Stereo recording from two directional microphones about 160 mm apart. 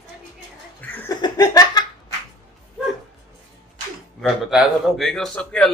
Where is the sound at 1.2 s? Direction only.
20° left (ahead or behind).